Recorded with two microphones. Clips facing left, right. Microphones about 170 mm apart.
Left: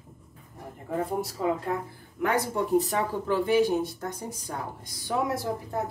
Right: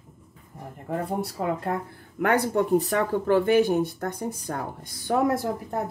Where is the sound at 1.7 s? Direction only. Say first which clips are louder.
Right 1 dB; 50° right (ahead or behind).